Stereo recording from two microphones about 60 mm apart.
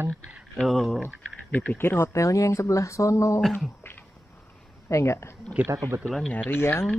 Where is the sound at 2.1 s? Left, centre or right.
Left.